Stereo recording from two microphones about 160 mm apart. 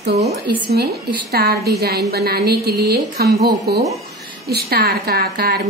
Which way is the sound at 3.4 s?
90° right.